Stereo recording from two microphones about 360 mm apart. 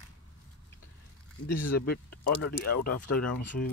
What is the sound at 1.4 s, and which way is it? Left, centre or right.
Speech, left.